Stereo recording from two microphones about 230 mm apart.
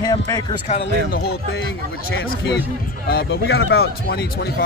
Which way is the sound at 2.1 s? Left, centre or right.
Left.